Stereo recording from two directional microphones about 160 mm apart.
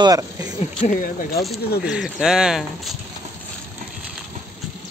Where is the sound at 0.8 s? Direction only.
55° left (ahead or behind).